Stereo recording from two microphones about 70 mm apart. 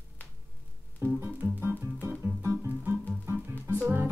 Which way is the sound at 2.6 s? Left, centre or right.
Right.